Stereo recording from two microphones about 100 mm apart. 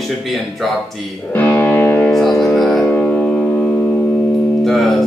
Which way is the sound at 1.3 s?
15° left (ahead or behind).